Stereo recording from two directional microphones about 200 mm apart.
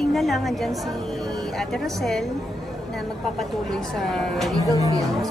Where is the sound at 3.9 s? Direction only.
Centre (ahead or behind).